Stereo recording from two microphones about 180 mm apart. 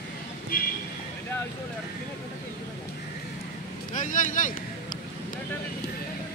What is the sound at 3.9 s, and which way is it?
Speech, 45° left (ahead or behind).